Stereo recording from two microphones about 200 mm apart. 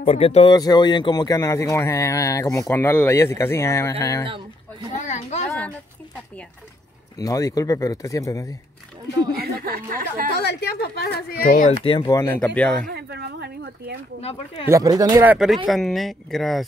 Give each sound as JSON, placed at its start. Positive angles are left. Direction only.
{"t": 0.0, "sound": "speech", "side_deg": 30}
{"t": 4.9, "sound": "children playing", "side_deg": 35}
{"t": 7.2, "sound": "speech", "side_deg": 15}
{"t": 9.4, "sound": "speech", "side_deg": -45}
{"t": 10.3, "sound": "speech", "side_deg": 55}
{"t": 11.8, "sound": "speech", "side_deg": 25}
{"t": 12.8, "sound": "a sound", "side_deg": -55}
{"t": 14.2, "sound": "speech", "side_deg": 30}
{"t": 14.7, "sound": "speech", "side_deg": -15}
{"t": 15.3, "sound": "speech", "side_deg": 0}